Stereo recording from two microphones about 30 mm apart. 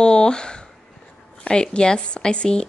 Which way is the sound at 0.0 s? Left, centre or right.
Left.